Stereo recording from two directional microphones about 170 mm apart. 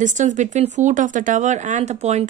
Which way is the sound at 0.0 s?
45° right (ahead or behind).